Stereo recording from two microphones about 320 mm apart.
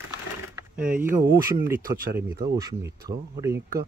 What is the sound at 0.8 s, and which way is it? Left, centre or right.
Speech, right.